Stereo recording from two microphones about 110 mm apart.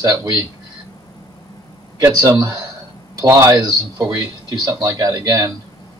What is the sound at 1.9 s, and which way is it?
Speech, 30° right (ahead or behind).